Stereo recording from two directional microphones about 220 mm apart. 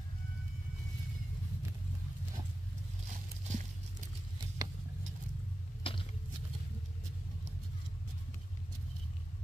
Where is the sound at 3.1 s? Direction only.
35° right (ahead or behind).